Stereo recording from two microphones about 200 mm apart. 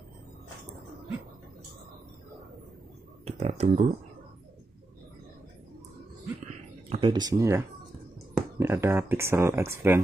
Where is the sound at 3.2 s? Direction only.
30° right (ahead or behind).